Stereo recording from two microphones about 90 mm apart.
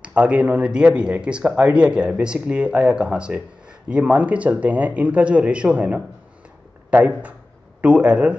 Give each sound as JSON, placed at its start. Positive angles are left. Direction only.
{"t": 0.0, "sound": "speech", "side_deg": -15}